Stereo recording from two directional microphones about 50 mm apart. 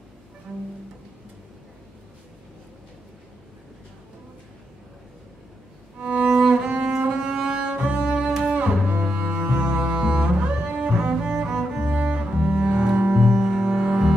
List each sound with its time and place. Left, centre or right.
5.9 s music: right
7.0 s cello: centre
11.8 s cello: right